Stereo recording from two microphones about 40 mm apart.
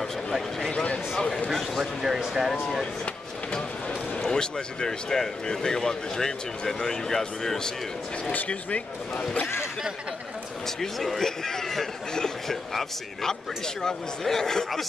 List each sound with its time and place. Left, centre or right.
0.0 s a sound: centre
1.5 s speech: centre
4.3 s speech: centre
8.5 s speech: left
10.8 s speech: centre